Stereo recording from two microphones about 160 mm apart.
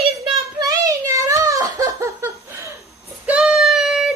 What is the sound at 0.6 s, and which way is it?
Giggle, 20° right (ahead or behind).